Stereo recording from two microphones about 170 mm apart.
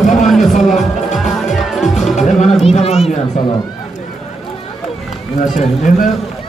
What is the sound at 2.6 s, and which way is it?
Run, 35° left (ahead or behind).